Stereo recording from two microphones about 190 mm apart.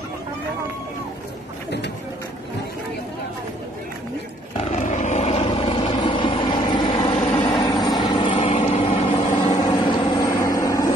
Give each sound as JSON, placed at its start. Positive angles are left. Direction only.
{"t": 4.6, "sound": "vehicle", "side_deg": 35}
{"t": 9.6, "sound": "vehicle", "side_deg": 20}